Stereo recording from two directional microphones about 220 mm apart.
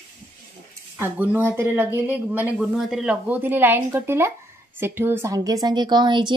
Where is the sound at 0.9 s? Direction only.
10° right (ahead or behind).